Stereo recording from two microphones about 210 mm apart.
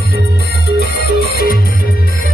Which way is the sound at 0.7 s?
45° left (ahead or behind).